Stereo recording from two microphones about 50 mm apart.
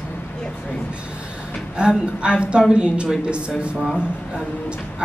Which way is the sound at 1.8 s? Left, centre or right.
Centre.